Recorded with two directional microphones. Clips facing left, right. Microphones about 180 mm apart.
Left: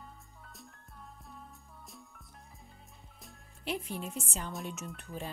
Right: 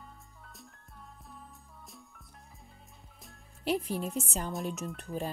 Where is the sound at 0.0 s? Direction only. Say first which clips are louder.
Even; centre (ahead or behind).